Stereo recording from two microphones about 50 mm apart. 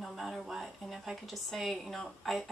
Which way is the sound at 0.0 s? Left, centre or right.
Centre.